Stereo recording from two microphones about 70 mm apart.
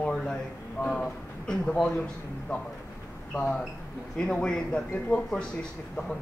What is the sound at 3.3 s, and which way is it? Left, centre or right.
Speech, centre.